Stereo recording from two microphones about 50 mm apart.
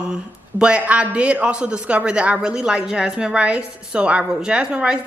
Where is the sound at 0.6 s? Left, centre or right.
Right.